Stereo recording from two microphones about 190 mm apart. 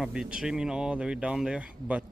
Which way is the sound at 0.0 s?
5° right (ahead or behind).